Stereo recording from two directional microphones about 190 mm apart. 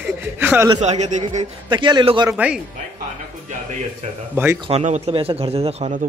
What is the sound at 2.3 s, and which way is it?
Speech, 5° right (ahead or behind).